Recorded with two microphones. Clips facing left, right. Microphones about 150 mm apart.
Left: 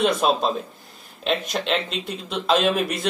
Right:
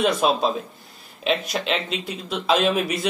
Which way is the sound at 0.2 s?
Centre (ahead or behind).